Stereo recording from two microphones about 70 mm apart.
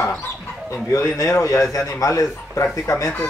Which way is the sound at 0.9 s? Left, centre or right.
Left.